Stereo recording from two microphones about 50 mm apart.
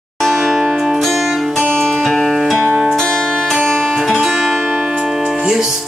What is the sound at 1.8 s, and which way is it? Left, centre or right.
Music, centre.